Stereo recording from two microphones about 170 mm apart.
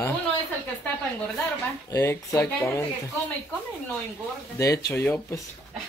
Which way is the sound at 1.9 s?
15° left (ahead or behind).